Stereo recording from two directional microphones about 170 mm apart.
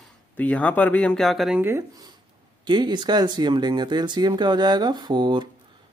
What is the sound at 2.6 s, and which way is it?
Speech, 25° right (ahead or behind).